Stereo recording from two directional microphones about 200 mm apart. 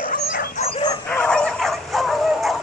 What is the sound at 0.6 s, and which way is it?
Dog, 25° left (ahead or behind).